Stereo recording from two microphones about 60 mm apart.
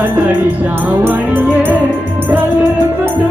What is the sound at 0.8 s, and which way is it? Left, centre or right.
Music, right.